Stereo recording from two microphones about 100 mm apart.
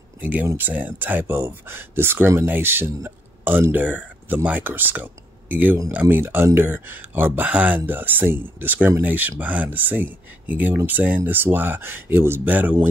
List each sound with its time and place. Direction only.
0.2 s speech: 15° right (ahead or behind)